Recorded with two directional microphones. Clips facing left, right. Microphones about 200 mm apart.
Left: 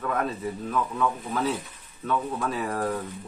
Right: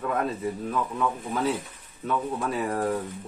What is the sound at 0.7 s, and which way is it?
Speech, 15° right (ahead or behind).